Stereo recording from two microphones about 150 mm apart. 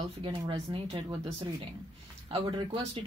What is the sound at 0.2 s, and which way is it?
Speech, 35° right (ahead or behind).